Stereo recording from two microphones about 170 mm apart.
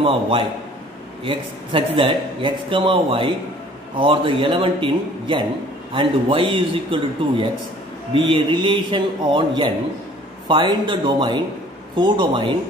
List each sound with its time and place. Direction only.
0.0 s a man's voice: 35° right (ahead or behind)